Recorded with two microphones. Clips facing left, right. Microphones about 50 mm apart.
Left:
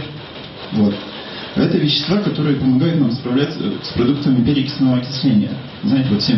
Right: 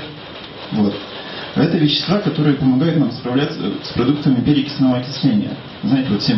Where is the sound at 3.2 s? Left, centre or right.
Centre.